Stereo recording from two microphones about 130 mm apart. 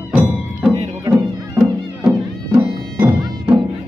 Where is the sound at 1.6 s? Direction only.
Centre (ahead or behind).